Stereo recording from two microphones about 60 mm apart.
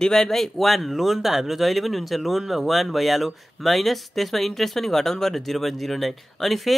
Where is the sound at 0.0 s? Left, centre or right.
Centre.